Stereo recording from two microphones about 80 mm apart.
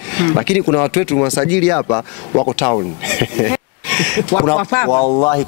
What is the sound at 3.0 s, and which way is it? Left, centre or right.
Speech, centre.